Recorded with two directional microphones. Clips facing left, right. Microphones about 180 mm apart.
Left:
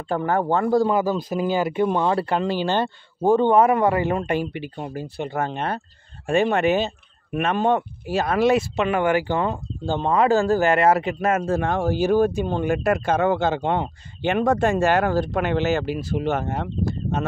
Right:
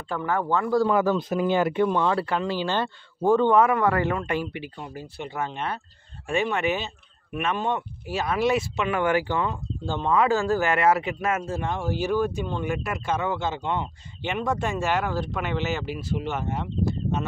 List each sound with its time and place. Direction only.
0.2 s speech: 35° left (ahead or behind)
1.5 s speech: 5° left (ahead or behind)
1.9 s speech: 20° left (ahead or behind)
2.4 s speech: 50° left (ahead or behind)
3.2 s a man's voice: 20° left (ahead or behind)
4.7 s speech: 45° left (ahead or behind)
11.4 s speech: 60° left (ahead or behind)
11.9 s speech: 40° left (ahead or behind)
12.7 s speech: 55° left (ahead or behind)
13.0 s speech: 45° left (ahead or behind)